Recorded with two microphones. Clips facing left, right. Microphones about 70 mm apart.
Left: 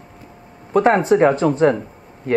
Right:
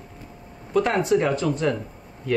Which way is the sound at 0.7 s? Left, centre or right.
Left.